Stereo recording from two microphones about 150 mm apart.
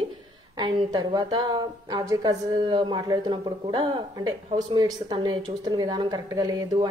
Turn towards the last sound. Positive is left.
turn(degrees=-25)  # may be behind; listen again after turning